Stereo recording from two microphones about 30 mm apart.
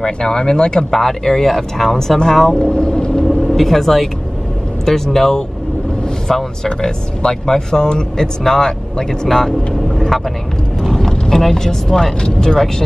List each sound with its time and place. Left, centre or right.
0.0 s speech: left
0.9 s speech: centre
2.5 s speech: left
3.3 s vehicle: centre
4.8 s speech: centre
9.9 s vehicle: centre
10.9 s speech: centre